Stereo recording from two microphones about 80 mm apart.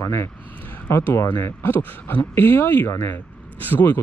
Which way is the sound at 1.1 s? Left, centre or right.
Left.